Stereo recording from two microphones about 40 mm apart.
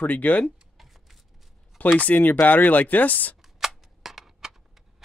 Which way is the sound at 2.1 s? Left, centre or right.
Left.